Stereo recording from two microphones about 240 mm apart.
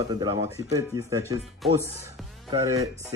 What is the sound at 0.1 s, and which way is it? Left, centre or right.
Speech, centre.